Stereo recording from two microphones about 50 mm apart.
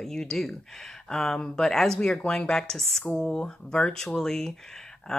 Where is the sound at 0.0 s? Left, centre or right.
Centre.